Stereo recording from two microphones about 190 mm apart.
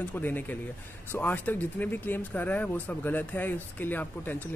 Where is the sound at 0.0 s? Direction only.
10° left (ahead or behind).